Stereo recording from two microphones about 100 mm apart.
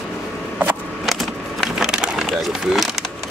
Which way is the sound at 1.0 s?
Centre (ahead or behind).